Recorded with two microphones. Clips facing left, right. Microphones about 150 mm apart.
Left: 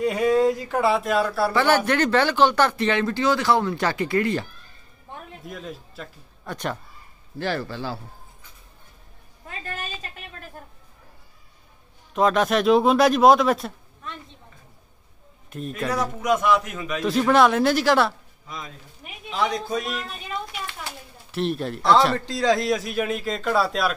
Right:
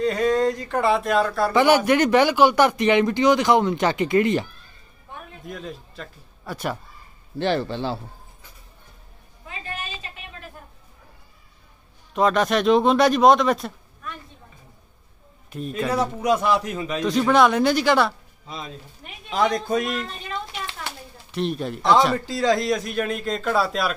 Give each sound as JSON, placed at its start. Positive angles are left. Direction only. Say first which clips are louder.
{"t": 0.0, "sound": "a man's voice", "louder": "left 1 dB", "side_deg": 10}
{"t": 1.5, "sound": "speech", "louder": "right 6 dB", "side_deg": -15}
{"t": 5.4, "sound": "speech", "louder": "right 3 dB", "side_deg": 0}
{"t": 7.3, "sound": "speech", "louder": "right 4 dB", "side_deg": -25}
{"t": 9.5, "sound": "a sound", "louder": "even", "side_deg": 45}
{"t": 12.1, "sound": "a man's voice", "louder": "even", "side_deg": 0}
{"t": 14.0, "sound": "a sound", "louder": "right 1 dB", "side_deg": 25}
{"t": 15.5, "sound": "a man's voice", "louder": "right 2 dB", "side_deg": 0}
{"t": 15.9, "sound": "a man's voice", "louder": "right 1 dB", "side_deg": -30}
{"t": 17.0, "sound": "a man's voice", "louder": "even", "side_deg": 0}
{"t": 18.5, "sound": "speech", "louder": "right 2 dB", "side_deg": -25}
{"t": 19.3, "sound": "a man's voice", "louder": "right 4 dB", "side_deg": -50}
{"t": 21.3, "sound": "a man's voice", "louder": "even", "side_deg": 0}